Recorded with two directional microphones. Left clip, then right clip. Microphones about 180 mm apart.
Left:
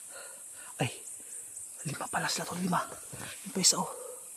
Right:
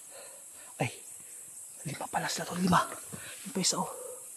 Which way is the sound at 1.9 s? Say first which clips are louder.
Left 1 dB; 15° left (ahead or behind).